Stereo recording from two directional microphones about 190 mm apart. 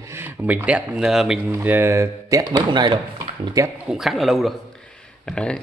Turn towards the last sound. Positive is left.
turn(degrees=5)  # may be behind; listen again after turning